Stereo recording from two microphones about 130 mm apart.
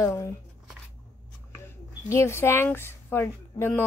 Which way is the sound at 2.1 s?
20° left (ahead or behind).